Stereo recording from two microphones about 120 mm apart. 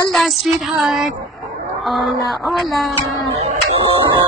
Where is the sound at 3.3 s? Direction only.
60° right (ahead or behind).